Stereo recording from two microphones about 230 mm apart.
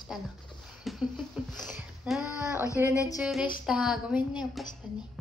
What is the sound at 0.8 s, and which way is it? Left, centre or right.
A woman's voice, centre.